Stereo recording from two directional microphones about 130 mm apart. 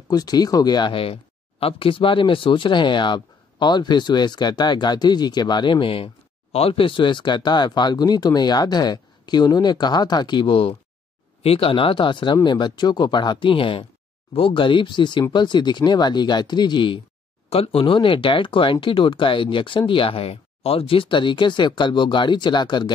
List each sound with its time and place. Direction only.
0.1 s speech: 30° left (ahead or behind)